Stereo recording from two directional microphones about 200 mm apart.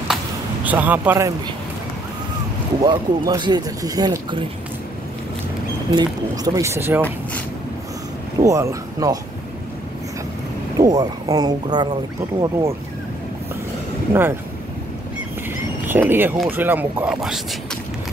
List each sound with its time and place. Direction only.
0.7 s speech: 10° right (ahead or behind)
2.8 s speech: 20° right (ahead or behind)
5.9 s speech: 20° right (ahead or behind)
8.4 s speech: 15° right (ahead or behind)
10.8 s speech: 20° right (ahead or behind)
15.9 s speech: 10° right (ahead or behind)